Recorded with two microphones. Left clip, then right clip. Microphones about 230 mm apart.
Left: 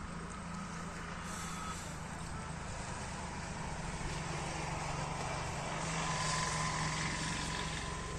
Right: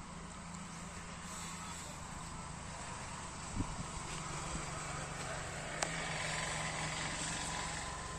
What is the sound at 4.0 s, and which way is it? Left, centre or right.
Vehicle, right.